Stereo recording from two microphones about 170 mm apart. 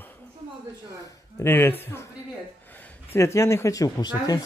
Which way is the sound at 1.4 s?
15° left (ahead or behind).